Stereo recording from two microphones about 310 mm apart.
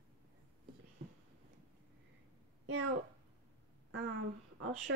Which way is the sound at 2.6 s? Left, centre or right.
Right.